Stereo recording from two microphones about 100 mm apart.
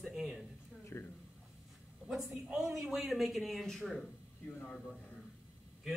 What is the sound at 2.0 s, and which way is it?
Speech, 5° right (ahead or behind).